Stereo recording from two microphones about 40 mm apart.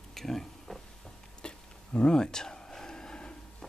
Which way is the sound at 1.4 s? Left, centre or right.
Left.